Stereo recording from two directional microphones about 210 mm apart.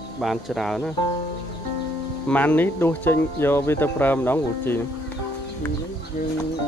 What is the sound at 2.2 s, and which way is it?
Speech, 5° left (ahead or behind).